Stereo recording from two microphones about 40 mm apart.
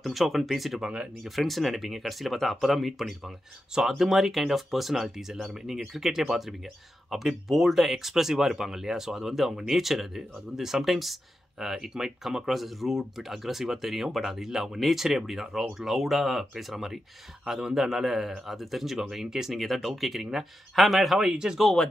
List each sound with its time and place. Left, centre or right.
0.0 s speech: centre
21.2 s speech: centre